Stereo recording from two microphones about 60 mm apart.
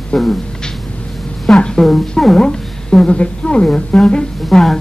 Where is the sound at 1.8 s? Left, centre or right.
Centre.